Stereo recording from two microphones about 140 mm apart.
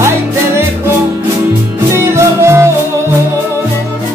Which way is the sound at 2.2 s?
20° right (ahead or behind).